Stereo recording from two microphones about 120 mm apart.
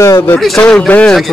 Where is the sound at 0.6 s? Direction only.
10° left (ahead or behind).